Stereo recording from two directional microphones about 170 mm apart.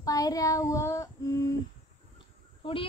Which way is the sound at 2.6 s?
30° left (ahead or behind).